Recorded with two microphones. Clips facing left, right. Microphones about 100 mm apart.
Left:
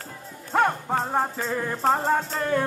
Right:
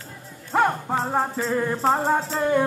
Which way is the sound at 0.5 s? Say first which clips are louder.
Right 1 dB; centre (ahead or behind).